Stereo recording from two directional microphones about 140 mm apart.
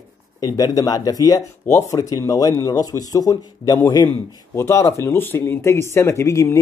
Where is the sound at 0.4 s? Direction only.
25° left (ahead or behind).